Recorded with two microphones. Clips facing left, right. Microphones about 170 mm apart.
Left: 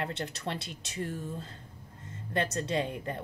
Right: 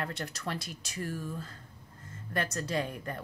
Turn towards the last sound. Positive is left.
turn(degrees=25)  # may be behind; listen again after turning